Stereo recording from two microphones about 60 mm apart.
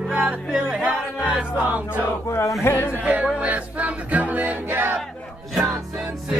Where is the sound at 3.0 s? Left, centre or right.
Centre; by 5.0 s right.